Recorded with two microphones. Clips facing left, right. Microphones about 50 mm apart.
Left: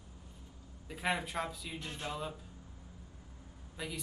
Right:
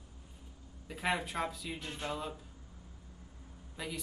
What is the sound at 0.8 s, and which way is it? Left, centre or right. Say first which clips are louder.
Speech: right 1 dB; centre.